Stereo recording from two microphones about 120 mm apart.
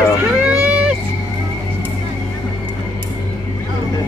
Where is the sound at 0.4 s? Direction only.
5° right (ahead or behind).